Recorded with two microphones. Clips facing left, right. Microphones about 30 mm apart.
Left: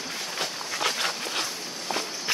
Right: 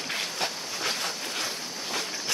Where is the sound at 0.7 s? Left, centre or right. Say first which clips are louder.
Left 5 dB; left.